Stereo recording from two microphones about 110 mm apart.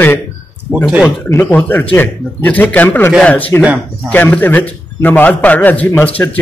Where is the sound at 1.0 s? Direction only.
20° left (ahead or behind).